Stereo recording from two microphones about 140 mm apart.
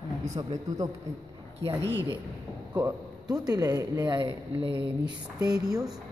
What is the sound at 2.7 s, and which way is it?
A man's voice, 30° right (ahead or behind).